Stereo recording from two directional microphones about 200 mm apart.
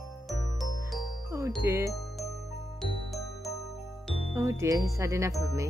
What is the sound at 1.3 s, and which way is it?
Music, 10° right (ahead or behind).